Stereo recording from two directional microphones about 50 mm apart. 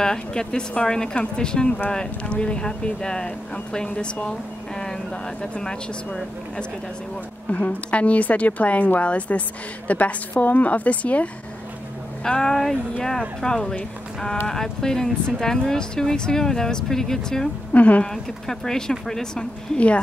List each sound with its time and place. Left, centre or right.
0.0 s a woman's voice: centre
7.5 s a woman's voice: left
12.3 s a woman's voice: centre
17.7 s a woman's voice: left
18.1 s speech: centre